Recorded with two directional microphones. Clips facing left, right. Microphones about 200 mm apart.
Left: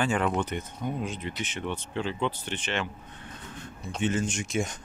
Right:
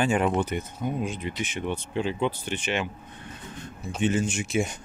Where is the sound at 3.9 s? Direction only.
10° right (ahead or behind).